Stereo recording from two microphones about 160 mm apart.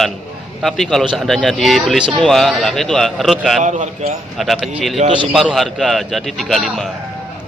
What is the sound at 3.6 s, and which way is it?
Speech, 50° right (ahead or behind).